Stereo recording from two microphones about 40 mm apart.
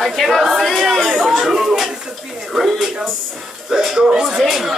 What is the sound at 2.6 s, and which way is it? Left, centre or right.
Speech, centre.